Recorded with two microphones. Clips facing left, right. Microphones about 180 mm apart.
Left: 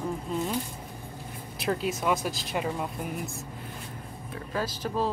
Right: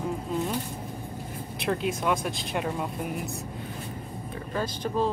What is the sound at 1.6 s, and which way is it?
Speech, centre (ahead or behind).